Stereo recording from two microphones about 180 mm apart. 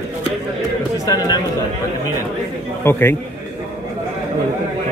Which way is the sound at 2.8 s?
15° left (ahead or behind).